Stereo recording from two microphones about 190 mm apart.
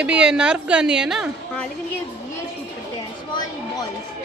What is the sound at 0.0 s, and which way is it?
Speech, 5° right (ahead or behind).